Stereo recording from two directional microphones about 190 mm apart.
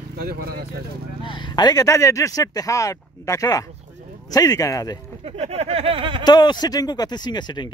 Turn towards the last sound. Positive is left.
turn(degrees=20)  # may be behind; listen again after turning